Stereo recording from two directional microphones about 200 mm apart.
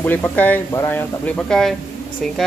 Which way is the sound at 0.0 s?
10° left (ahead or behind).